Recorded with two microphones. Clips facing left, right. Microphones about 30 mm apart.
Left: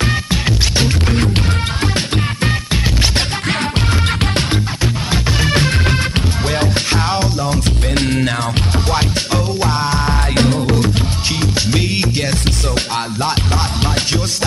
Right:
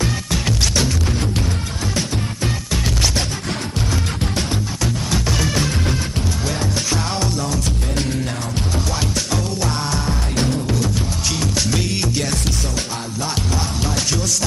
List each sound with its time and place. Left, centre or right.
0.3 s music: left
2.0 s music: left
5.1 s music: left
5.6 s music: left
7.1 s music: left
7.9 s music: left
8.9 s music: left
10.0 s music: left
11.3 s music: left
12.7 s music: left